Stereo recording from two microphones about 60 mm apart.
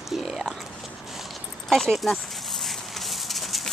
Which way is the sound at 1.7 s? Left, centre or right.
Centre.